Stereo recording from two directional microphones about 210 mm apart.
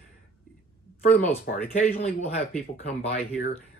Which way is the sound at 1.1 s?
35° left (ahead or behind).